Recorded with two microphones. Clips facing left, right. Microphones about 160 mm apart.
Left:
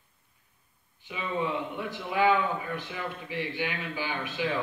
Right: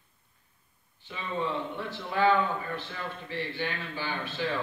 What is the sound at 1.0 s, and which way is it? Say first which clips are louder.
A man's voice: left 2 dB; 15° left (ahead or behind).